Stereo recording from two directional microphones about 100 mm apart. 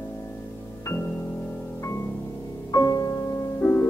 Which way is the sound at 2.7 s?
35° left (ahead or behind).